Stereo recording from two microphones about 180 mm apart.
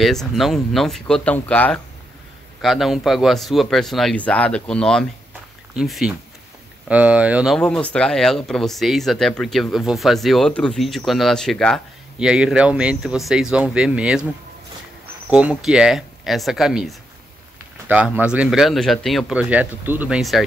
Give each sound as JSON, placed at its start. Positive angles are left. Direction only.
{"t": 0.0, "sound": "speech", "side_deg": 0}
{"t": 15.2, "sound": "speech", "side_deg": -5}